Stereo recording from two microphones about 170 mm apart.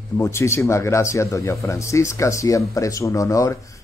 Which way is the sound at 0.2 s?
15° left (ahead or behind).